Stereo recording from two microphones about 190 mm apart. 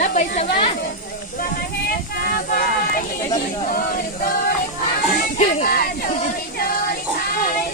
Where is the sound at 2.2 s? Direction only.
50° left (ahead or behind).